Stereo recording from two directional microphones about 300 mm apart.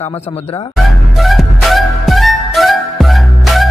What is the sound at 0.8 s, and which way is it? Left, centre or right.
Music, centre.